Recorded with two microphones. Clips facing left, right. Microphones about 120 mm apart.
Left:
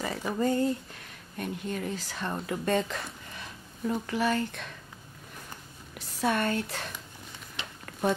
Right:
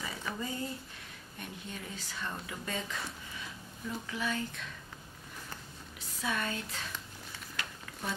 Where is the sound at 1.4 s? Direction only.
60° left (ahead or behind).